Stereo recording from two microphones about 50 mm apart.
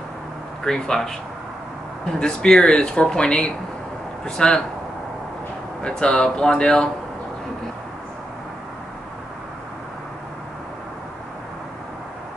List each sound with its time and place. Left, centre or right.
0.7 s speech: centre
2.1 s speech: centre
5.8 s speech: centre